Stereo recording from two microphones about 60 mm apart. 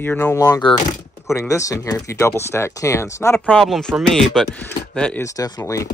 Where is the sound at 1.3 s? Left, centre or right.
Left.